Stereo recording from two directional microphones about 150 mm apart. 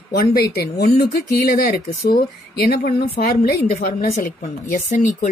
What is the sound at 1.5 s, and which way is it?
Speech, 75° left (ahead or behind).